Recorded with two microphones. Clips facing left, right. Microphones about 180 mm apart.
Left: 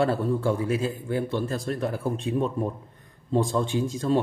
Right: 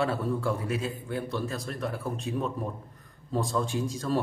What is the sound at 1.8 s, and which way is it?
Speech, centre (ahead or behind).